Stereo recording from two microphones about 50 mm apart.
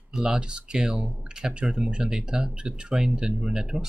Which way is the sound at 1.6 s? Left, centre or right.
Centre.